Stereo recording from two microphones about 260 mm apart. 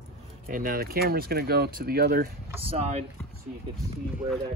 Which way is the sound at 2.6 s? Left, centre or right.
Right.